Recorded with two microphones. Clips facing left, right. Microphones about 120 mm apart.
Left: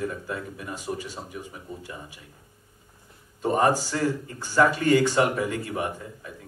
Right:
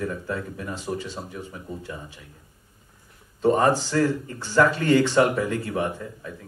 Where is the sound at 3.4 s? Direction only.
10° left (ahead or behind).